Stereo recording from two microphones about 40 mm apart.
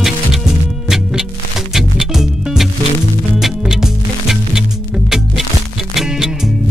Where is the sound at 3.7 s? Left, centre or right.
Centre.